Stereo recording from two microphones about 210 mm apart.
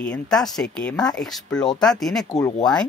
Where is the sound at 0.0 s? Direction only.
5° left (ahead or behind).